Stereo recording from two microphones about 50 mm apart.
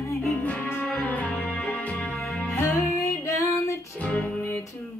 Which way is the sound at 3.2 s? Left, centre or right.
Left.